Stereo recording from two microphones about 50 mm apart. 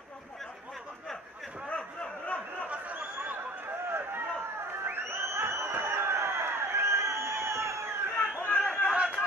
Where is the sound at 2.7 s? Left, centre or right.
Right.